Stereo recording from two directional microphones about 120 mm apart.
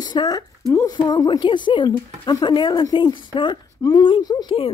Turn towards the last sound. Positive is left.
turn(degrees=35)  # may be behind; listen again after turning